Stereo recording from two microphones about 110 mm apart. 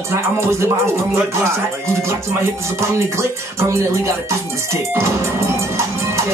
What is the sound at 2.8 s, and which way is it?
Speech, 25° right (ahead or behind).